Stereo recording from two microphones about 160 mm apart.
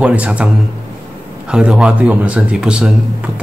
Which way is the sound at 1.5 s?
5° right (ahead or behind).